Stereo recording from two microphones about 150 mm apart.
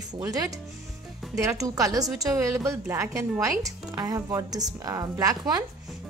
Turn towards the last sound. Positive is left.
turn(degrees=-25)  # may be behind; listen again after turning